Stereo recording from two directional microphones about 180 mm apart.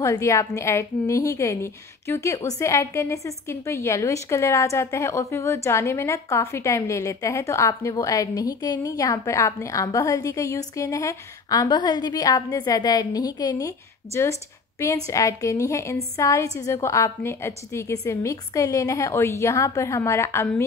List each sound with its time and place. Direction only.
0.0 s a woman's voice: 15° left (ahead or behind)